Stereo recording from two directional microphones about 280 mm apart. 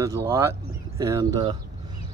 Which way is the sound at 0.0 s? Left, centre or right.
Centre.